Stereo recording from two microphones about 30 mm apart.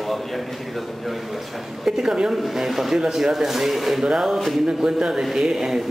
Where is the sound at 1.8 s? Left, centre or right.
Right.